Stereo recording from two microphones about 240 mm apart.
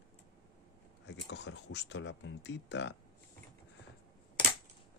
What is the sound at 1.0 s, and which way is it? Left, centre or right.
Speech, left.